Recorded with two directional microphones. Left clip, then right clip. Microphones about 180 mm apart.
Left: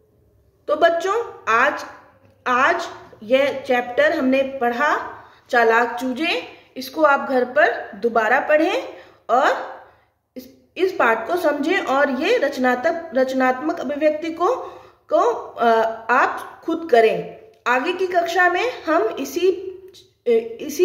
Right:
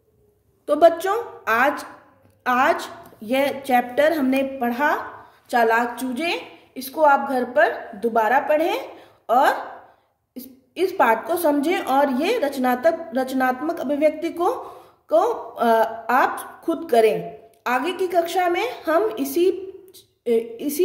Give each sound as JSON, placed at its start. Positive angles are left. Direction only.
{"t": 0.7, "sound": "a woman's voice", "side_deg": -40}